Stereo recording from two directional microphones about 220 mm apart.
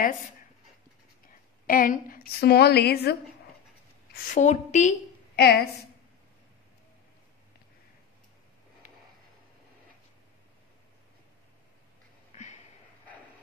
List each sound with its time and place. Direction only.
1.7 s a woman's voice: 40° left (ahead or behind)
4.1 s a woman's voice: 35° left (ahead or behind)
5.4 s a woman's voice: 45° left (ahead or behind)